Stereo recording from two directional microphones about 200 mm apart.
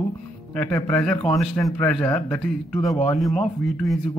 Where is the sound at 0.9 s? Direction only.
5° left (ahead or behind).